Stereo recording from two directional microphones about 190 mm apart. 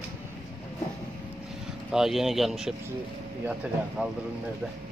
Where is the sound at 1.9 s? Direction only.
Centre (ahead or behind).